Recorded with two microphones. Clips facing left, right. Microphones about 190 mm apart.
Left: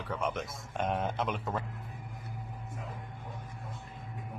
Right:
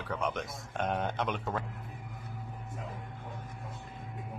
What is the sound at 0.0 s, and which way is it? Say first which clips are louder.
Speech: even; centre (ahead or behind).